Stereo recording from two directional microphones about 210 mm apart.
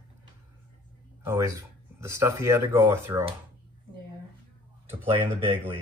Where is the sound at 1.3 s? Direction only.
15° right (ahead or behind).